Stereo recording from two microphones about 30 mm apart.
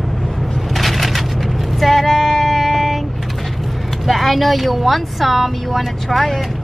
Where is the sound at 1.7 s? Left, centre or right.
Centre.